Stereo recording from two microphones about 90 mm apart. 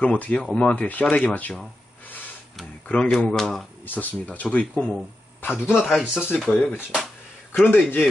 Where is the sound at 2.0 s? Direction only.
20° left (ahead or behind).